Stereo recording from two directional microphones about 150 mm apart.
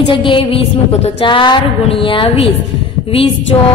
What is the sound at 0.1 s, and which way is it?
A woman's voice, 35° left (ahead or behind).